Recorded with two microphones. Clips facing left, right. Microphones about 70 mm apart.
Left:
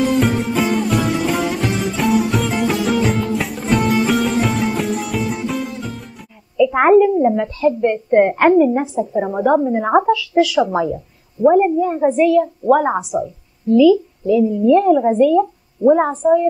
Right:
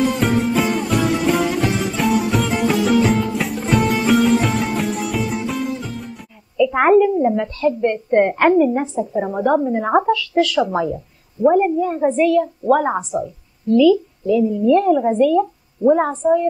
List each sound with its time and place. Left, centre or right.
0.0 s music: centre
6.5 s a woman's voice: centre